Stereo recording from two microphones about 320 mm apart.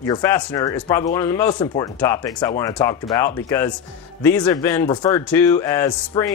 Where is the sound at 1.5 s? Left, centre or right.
Left.